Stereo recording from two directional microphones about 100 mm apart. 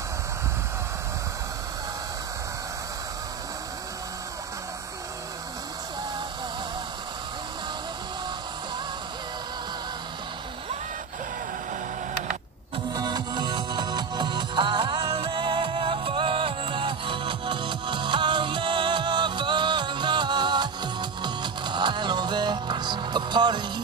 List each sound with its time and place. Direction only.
12.9 s music: 45° right (ahead or behind)